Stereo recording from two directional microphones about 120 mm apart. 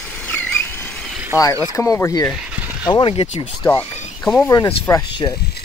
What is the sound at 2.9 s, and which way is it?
Speech, 45° left (ahead or behind).